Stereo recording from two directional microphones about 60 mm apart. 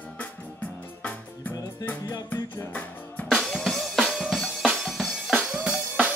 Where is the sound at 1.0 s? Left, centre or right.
Left.